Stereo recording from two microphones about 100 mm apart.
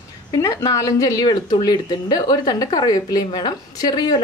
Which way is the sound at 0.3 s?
40° left (ahead or behind).